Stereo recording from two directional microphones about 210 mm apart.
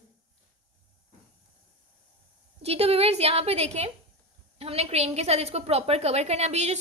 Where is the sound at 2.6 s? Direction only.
30° right (ahead or behind).